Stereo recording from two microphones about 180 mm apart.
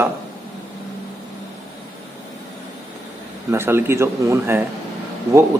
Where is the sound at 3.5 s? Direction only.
15° right (ahead or behind).